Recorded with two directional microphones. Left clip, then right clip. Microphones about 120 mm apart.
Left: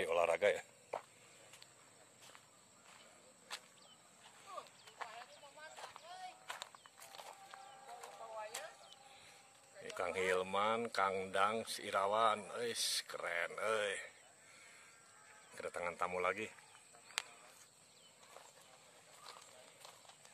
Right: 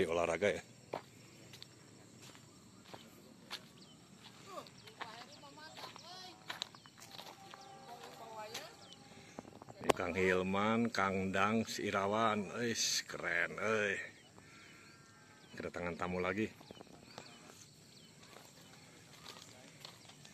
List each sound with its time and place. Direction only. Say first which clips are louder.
0.0 s speech: even; 15° left (ahead or behind)
5.0 s a sound: right 1 dB; 10° left (ahead or behind)
6.4 s walk: right 8 dB; 10° left (ahead or behind)
7.1 s a sound: right 2 dB; 20° left (ahead or behind)
9.9 s speech: right 3 dB; 20° left (ahead or behind)
15.5 s speech: right 1 dB; 10° left (ahead or behind)